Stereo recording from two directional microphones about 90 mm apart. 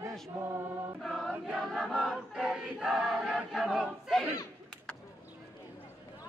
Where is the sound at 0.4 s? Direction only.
25° right (ahead or behind).